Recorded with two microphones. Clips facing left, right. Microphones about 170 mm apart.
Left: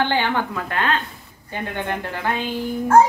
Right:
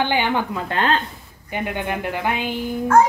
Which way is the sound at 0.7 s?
30° right (ahead or behind).